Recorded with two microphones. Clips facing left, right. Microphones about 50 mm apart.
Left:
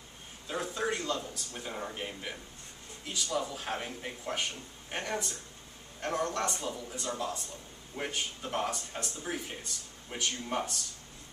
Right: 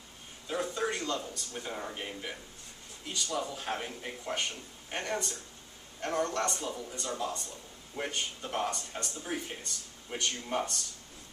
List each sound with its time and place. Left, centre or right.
0.5 s speech: centre